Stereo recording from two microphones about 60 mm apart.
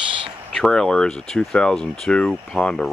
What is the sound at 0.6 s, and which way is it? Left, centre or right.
Speech, centre.